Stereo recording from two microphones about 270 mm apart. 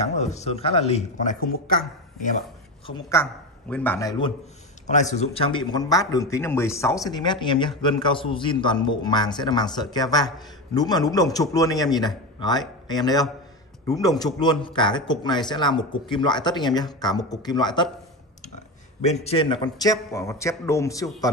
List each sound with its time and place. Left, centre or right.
0.0 s speech: left
2.9 s a man's voice: centre
18.9 s speech: left